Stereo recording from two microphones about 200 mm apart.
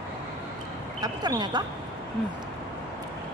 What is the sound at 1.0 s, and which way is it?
Speech, 20° right (ahead or behind).